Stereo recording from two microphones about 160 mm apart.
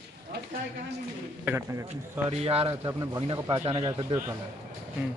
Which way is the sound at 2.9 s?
20° right (ahead or behind).